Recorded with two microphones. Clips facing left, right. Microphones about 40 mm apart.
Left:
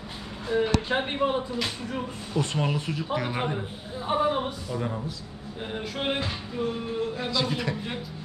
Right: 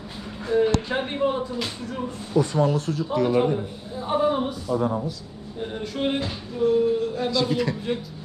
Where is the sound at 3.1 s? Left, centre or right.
Left.